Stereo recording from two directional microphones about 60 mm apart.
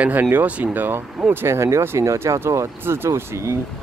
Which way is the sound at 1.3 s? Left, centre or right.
Right.